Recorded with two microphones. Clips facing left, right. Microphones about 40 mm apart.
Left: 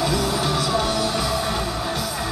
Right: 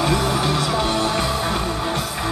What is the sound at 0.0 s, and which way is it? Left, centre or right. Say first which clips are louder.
Music: right 2 dB; right.